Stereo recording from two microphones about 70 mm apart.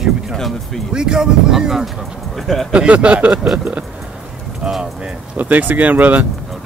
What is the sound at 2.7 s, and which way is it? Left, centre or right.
Speech, centre.